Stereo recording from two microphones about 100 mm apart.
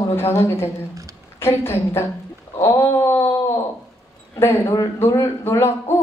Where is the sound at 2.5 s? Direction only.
25° left (ahead or behind).